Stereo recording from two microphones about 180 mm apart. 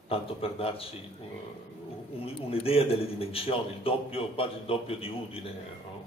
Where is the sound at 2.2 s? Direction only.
30° left (ahead or behind).